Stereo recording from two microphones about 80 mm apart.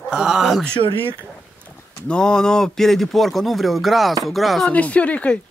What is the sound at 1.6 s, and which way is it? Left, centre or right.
Speech, centre.